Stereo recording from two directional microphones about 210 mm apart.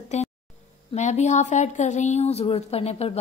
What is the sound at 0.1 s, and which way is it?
Speech, 35° left (ahead or behind).